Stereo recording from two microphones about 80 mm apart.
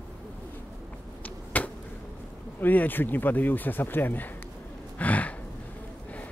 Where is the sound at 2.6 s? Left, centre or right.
Left.